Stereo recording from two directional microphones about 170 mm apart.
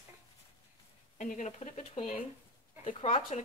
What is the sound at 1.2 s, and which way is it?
A woman's voice, 45° left (ahead or behind).